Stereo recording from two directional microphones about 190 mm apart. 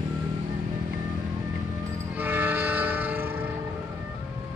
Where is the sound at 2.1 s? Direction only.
10° right (ahead or behind).